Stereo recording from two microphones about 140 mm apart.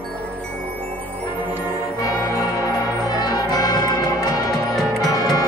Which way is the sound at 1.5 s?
15° right (ahead or behind).